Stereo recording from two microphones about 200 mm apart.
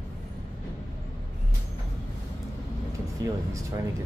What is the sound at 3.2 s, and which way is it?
Music, 20° right (ahead or behind).